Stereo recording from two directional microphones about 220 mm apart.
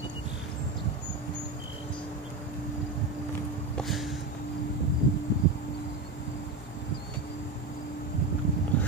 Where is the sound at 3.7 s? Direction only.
Centre (ahead or behind).